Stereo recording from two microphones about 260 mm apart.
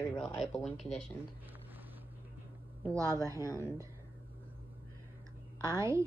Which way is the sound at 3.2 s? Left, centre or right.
Centre.